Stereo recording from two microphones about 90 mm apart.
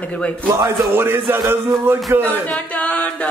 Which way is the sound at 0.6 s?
30° right (ahead or behind).